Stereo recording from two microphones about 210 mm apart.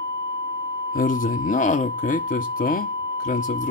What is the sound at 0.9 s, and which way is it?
Speech, 40° left (ahead or behind).